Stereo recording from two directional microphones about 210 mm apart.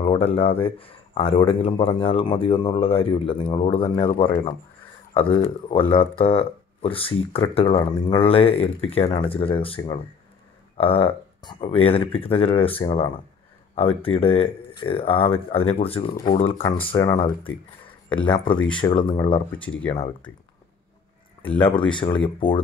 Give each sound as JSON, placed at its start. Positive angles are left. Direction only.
{"t": 0.0, "sound": "speech", "side_deg": 25}
{"t": 18.1, "sound": "speech", "side_deg": 5}
{"t": 18.8, "sound": "speech", "side_deg": 25}
{"t": 19.5, "sound": "speech", "side_deg": 5}
{"t": 21.4, "sound": "speech", "side_deg": 5}
{"t": 22.2, "sound": "speech", "side_deg": 25}